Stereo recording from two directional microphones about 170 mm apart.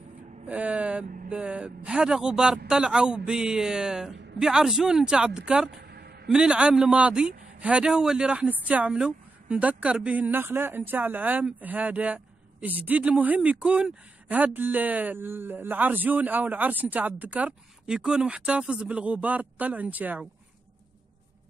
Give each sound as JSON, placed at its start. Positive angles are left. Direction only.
{"t": 0.5, "sound": "a man's voice", "side_deg": -10}
{"t": 1.0, "sound": "speech", "side_deg": -50}
{"t": 1.3, "sound": "speech", "side_deg": -5}
{"t": 5.9, "sound": "a sound", "side_deg": -70}
{"t": 6.2, "sound": "a man's voice", "side_deg": -5}